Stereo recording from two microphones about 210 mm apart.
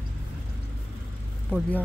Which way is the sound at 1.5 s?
10° left (ahead or behind).